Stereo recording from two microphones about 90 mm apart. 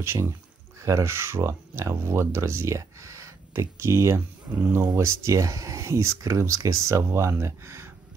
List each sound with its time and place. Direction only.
0.0 s speech: 30° right (ahead or behind)